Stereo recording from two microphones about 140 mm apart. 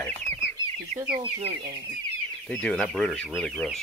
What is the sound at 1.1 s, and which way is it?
Speech, 40° right (ahead or behind).